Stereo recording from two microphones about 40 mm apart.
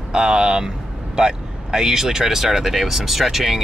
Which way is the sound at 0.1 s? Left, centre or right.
Centre.